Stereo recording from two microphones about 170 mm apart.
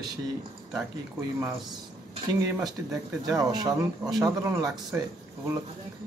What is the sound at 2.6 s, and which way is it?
Speech, 25° right (ahead or behind).